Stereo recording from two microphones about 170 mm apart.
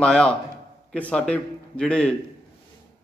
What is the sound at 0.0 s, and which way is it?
A man's voice, 5° left (ahead or behind).